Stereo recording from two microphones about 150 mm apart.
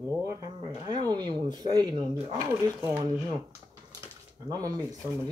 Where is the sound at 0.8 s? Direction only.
30° right (ahead or behind).